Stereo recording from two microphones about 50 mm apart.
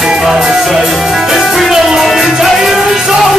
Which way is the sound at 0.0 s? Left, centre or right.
Centre.